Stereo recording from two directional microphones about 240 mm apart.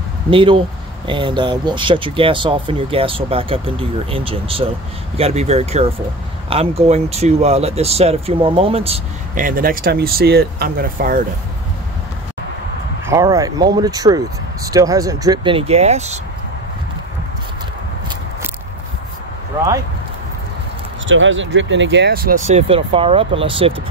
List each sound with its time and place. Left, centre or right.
0.3 s speech: right
13.0 s speech: centre
21.1 s speech: right